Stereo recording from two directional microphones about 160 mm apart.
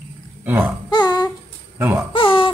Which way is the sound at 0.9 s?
25° left (ahead or behind).